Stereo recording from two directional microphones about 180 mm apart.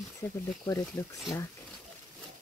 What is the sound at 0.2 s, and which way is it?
Speech, 15° left (ahead or behind).